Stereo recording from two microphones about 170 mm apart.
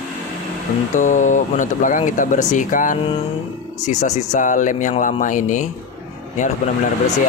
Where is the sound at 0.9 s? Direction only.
50° left (ahead or behind).